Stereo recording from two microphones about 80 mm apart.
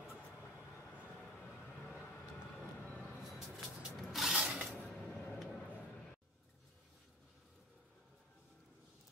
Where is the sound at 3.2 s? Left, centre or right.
Centre.